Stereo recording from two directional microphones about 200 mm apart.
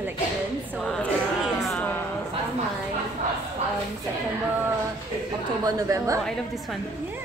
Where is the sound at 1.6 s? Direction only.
5° left (ahead or behind).